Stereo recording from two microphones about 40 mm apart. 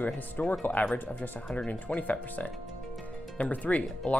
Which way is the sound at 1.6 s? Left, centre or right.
Left.